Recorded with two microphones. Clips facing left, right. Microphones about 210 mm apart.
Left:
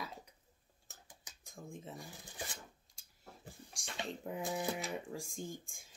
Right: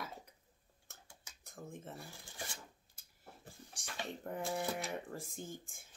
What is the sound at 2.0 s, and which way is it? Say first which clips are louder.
Shuffling cards: left 2 dB; 20° left (ahead or behind).